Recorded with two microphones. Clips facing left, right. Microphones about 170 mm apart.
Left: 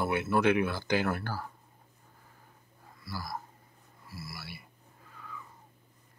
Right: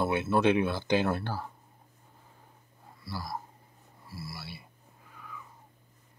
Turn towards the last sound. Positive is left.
turn(degrees=-10)  # may be behind; listen again after turning